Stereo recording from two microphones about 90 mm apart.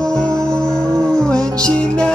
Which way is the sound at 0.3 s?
35° right (ahead or behind).